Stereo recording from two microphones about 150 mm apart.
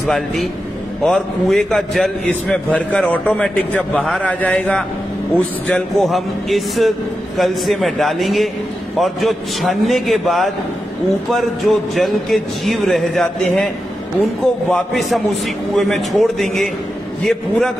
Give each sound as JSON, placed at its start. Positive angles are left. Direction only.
{"t": 0.0, "sound": "a man's voice", "side_deg": 0}